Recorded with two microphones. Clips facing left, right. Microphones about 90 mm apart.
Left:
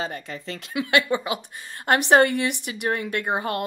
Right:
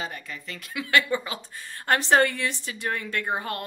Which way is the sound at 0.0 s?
30° left (ahead or behind).